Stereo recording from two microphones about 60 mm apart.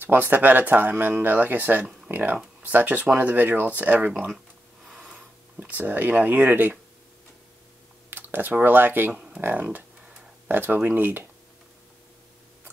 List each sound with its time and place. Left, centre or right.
0.0 s speech: right
4.1 s speech: centre
4.8 s a sound: centre
5.1 s speech: right
8.1 s speech: right